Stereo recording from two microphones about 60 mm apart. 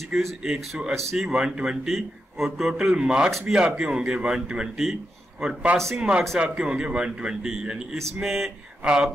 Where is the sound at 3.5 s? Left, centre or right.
Centre.